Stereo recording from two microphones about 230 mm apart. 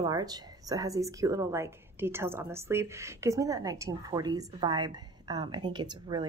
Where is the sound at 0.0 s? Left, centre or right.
Centre.